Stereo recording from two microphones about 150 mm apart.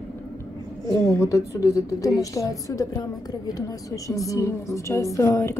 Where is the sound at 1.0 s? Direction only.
20° left (ahead or behind).